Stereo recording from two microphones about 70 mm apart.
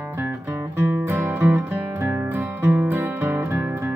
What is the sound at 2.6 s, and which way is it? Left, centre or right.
Music, right.